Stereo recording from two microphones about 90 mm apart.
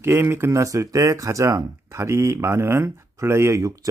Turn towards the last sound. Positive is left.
turn(degrees=-35)  # may be behind; listen again after turning